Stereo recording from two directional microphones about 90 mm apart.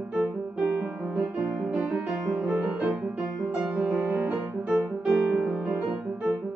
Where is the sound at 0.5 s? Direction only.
10° right (ahead or behind).